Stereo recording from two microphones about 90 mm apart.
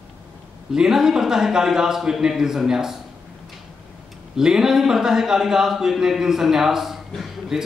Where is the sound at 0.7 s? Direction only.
5° right (ahead or behind).